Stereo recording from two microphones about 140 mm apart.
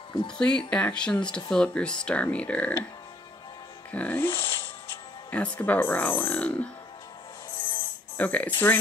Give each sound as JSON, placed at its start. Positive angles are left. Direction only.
{"t": 0.4, "sound": "speech", "side_deg": 5}
{"t": 3.9, "sound": "speech", "side_deg": 10}
{"t": 7.7, "sound": "music", "side_deg": 10}